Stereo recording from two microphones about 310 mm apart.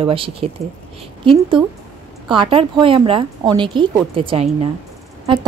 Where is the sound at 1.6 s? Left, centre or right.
Centre.